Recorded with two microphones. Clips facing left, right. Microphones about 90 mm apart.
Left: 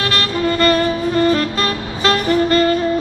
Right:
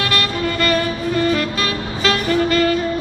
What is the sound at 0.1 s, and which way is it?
Music, 35° left (ahead or behind).